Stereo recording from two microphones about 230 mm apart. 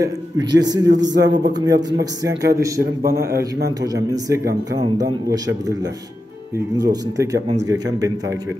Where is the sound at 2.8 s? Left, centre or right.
Right.